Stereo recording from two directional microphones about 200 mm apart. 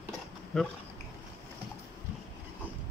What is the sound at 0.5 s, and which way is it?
Speech, centre (ahead or behind).